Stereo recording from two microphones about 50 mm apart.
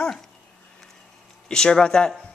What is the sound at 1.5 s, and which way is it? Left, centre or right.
Speech, centre.